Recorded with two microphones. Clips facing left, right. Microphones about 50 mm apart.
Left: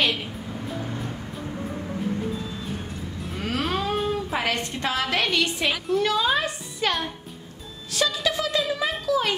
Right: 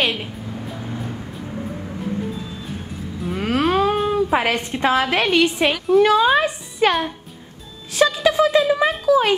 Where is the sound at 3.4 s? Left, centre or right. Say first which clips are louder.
Right 8 dB; right.